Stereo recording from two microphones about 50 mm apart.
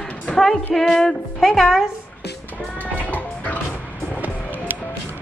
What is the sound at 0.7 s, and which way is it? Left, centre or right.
Music, centre.